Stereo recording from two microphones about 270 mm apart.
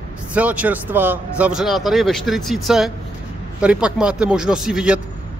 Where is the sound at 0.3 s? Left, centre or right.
Centre.